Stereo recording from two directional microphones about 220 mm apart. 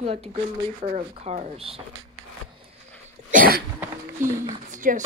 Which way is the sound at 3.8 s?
10° right (ahead or behind).